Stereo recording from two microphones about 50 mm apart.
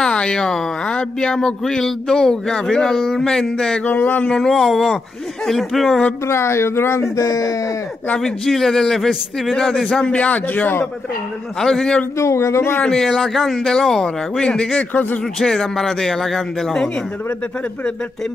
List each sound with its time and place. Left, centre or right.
0.0 s speech: centre
3.8 s speech: left
4.3 s a man's voice: centre
6.2 s speech: left
8.2 s speech: centre
10.0 s a man's voice: left
11.6 s speech: centre
12.2 s speech: left
13.0 s a man's voice: centre
14.8 s speech: left
15.3 s speech: centre